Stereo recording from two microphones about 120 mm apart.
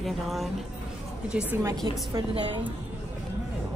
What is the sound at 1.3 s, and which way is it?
Speech, 15° right (ahead or behind).